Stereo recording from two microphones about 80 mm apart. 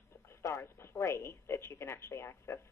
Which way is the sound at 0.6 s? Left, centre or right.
Left.